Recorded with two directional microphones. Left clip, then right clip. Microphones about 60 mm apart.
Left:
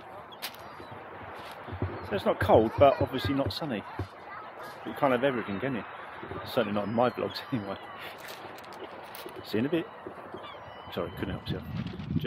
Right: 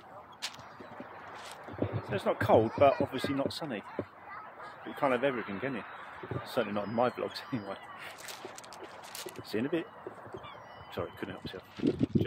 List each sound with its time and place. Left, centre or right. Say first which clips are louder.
2.0 s speech: left 4 dB; centre
5.0 s speech: left 3 dB; centre
6.5 s speech: left 4 dB; centre
9.5 s speech: left 4 dB; centre
11.0 s speech: left 4 dB; centre
11.7 s speech: right 10 dB; right